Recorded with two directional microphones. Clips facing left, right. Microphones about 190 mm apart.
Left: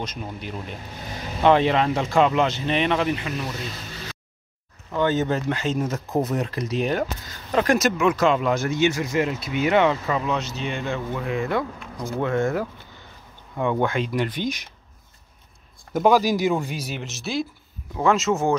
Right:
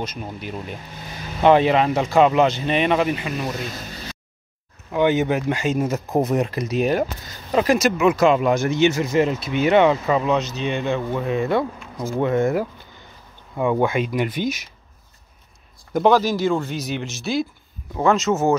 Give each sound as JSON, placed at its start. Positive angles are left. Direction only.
{"t": 0.0, "sound": "speech", "side_deg": -5}
{"t": 4.9, "sound": "speech", "side_deg": -15}
{"t": 15.9, "sound": "speech", "side_deg": 5}